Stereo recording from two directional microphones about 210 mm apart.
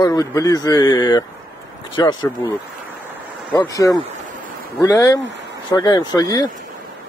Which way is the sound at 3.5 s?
20° left (ahead or behind).